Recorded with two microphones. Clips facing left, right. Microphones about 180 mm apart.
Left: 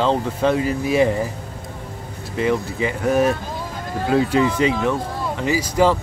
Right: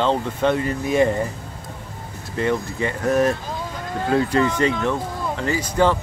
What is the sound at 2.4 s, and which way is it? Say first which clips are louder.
Speech: left 2 dB; 5° left (ahead or behind).